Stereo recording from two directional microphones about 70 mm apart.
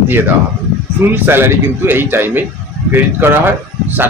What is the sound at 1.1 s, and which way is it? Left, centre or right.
A man's voice, right.